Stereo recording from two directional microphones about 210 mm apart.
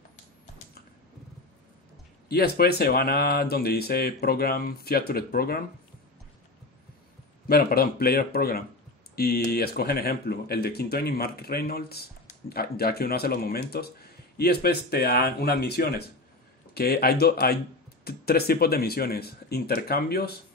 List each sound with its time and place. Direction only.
2.2 s speech: 50° left (ahead or behind)
7.4 s speech: 45° left (ahead or behind)